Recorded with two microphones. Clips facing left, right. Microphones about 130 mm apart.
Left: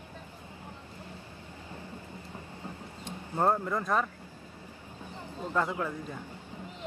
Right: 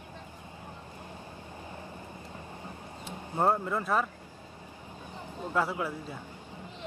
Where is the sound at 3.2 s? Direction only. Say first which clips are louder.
Even; 15° right (ahead or behind).